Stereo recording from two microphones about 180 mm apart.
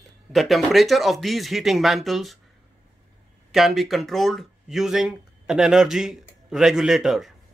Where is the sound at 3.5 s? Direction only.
Centre (ahead or behind).